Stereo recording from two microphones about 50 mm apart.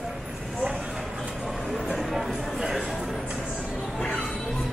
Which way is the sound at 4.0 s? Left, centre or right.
Centre.